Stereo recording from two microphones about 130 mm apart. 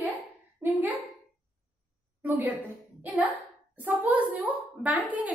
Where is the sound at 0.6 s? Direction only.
15° right (ahead or behind).